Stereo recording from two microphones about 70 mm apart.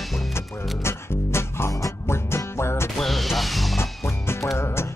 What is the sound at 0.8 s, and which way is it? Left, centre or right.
Music, left.